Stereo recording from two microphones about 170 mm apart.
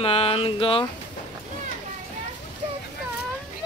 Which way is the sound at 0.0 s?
35° left (ahead or behind).